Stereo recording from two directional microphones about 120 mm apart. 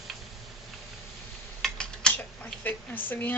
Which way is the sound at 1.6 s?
5° left (ahead or behind).